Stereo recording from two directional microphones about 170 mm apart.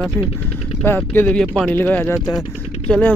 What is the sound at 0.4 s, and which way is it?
Speech, 10° left (ahead or behind).